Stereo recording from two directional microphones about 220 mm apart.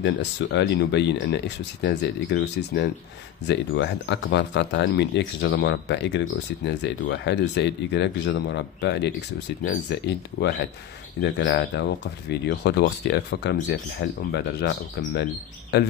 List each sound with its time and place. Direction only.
0.0 s speech: 55° left (ahead or behind)